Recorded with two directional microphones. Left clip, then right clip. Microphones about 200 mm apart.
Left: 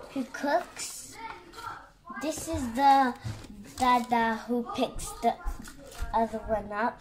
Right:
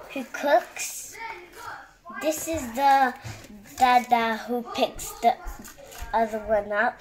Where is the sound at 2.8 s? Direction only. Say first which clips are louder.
Right 2 dB; 30° right (ahead or behind).